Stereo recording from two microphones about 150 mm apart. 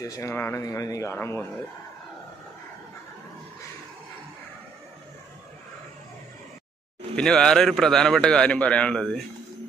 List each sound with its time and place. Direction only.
0.0 s speech: 20° left (ahead or behind)
7.2 s a man's voice: 5° left (ahead or behind)